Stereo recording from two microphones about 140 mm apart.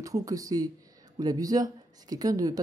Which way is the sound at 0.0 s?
25° right (ahead or behind).